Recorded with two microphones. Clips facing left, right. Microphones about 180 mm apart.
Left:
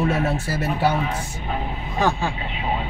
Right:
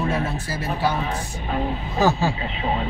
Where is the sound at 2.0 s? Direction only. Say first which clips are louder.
Right 2 dB; 5° right (ahead or behind).